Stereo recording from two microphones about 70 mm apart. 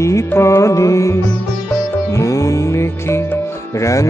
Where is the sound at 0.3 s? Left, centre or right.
Left.